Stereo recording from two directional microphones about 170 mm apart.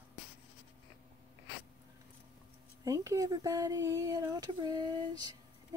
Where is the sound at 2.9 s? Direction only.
20° right (ahead or behind).